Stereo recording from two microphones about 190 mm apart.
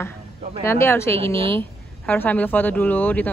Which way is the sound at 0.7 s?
15° left (ahead or behind).